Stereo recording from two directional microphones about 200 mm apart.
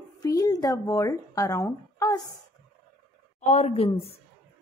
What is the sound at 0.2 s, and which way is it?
Speech, 15° left (ahead or behind).